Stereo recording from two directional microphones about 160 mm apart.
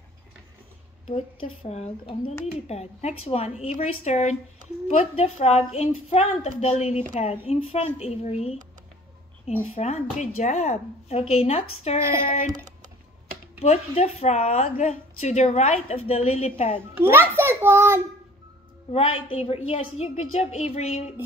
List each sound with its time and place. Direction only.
1.0 s a woman's voice: 35° left (ahead or behind)
9.8 s speech: 45° left (ahead or behind)
12.4 s speech: 25° right (ahead or behind)
13.6 s a woman's voice: 40° left (ahead or behind)
17.4 s a child's voice: 15° right (ahead or behind)
18.9 s a woman's voice: 40° left (ahead or behind)